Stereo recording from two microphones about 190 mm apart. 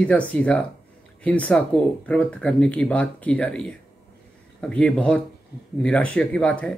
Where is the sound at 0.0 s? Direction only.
5° left (ahead or behind).